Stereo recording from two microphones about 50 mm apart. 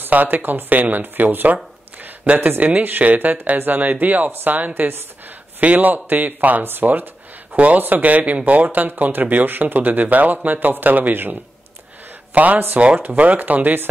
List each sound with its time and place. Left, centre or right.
0.1 s speech: right
6.6 s speech: right
7.5 s speech: right
12.4 s speech: right